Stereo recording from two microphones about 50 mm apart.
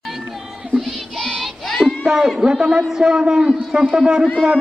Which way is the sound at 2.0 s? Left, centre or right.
Centre.